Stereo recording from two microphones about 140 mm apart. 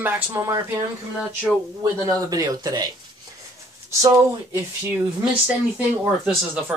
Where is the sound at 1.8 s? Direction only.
25° right (ahead or behind).